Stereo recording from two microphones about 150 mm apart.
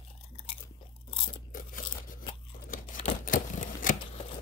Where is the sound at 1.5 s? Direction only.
70° left (ahead or behind).